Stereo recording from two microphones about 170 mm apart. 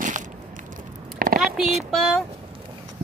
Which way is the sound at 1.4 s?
Centre (ahead or behind).